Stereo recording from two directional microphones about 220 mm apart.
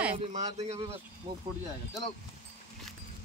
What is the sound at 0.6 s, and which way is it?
Speech, 30° right (ahead or behind).